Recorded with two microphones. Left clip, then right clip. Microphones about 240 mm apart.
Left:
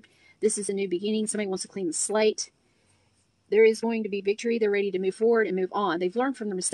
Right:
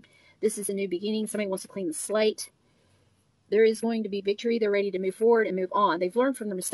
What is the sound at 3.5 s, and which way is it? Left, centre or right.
Speech, centre.